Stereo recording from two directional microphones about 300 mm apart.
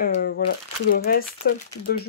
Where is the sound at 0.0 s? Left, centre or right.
Left.